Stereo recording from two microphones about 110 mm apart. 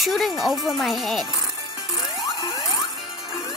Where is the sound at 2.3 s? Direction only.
40° left (ahead or behind).